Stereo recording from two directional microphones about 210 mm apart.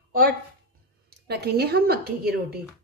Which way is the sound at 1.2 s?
50° right (ahead or behind).